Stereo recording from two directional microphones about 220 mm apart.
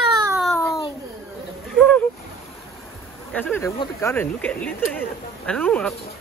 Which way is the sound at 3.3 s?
10° left (ahead or behind).